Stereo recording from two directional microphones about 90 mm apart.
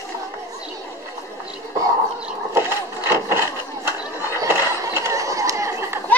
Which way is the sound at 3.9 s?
30° right (ahead or behind).